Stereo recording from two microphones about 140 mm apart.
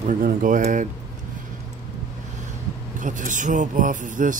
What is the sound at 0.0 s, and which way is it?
Speech, 75° right (ahead or behind).